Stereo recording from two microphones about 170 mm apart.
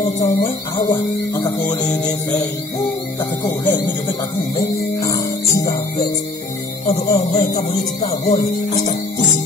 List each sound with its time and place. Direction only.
0.0 s music: 25° left (ahead or behind)
3.4 s music: 25° left (ahead or behind)
6.9 s speech: 40° left (ahead or behind)